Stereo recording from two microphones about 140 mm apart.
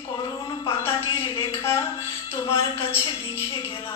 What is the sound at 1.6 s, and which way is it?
Music, 20° left (ahead or behind).